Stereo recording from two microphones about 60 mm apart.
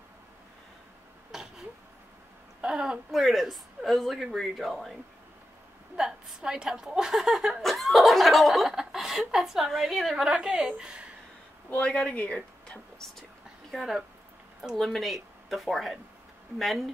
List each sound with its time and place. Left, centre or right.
1.3 s a sound: centre
2.6 s speech: centre
5.9 s a woman's voice: centre
11.7 s speech: left
12.6 s a sound: centre
13.7 s speech: centre